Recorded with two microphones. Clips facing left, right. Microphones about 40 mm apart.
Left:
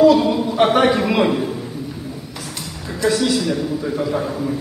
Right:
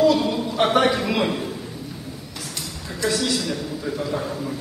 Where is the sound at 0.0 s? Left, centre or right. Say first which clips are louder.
Left 6 dB; centre.